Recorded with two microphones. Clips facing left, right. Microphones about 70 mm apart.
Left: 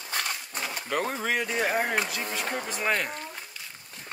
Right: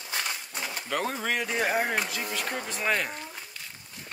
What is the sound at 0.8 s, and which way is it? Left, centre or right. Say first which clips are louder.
Speech: left 1 dB; centre.